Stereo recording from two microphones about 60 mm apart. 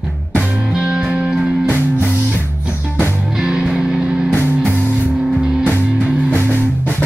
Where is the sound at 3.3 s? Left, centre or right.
Centre.